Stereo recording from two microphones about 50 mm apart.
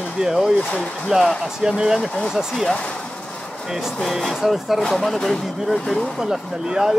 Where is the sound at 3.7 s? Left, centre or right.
Centre.